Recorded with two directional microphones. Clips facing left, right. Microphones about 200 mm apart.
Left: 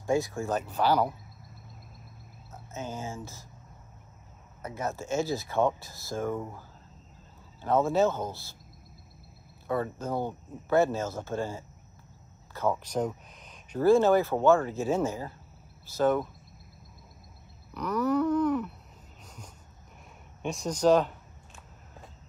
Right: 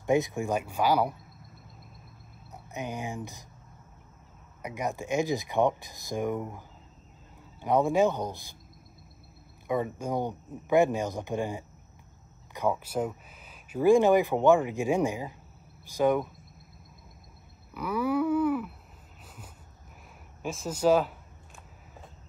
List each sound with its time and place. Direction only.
0.0 s speech: 20° right (ahead or behind)
2.5 s speech: 15° right (ahead or behind)
4.6 s speech: 15° right (ahead or behind)
7.6 s speech: 15° right (ahead or behind)
9.7 s speech: 15° right (ahead or behind)
17.7 s a sound: 10° right (ahead or behind)
20.4 s speech: 5° right (ahead or behind)